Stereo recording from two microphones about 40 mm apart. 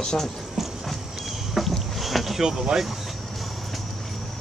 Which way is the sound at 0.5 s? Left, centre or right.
Centre.